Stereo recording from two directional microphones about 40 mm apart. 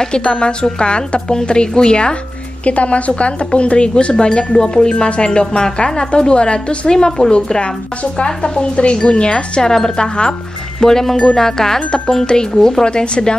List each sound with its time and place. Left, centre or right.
0.0 s speech: left
2.6 s speech: left
7.1 s speech: centre